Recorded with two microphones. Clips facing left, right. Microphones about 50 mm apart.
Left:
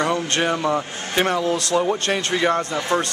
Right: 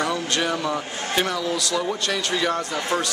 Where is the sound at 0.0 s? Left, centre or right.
Left.